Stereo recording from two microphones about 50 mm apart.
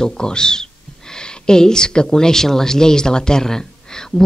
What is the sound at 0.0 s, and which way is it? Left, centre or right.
Speech, centre.